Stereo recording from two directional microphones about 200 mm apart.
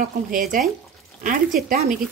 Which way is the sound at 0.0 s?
40° right (ahead or behind).